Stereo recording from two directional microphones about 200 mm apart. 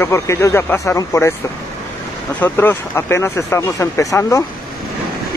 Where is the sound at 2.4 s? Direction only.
10° left (ahead or behind).